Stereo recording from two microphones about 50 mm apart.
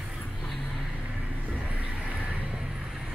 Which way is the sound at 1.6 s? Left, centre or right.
Right.